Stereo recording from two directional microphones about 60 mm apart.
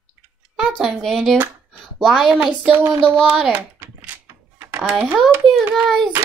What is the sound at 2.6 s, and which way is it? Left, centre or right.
Child singing, right.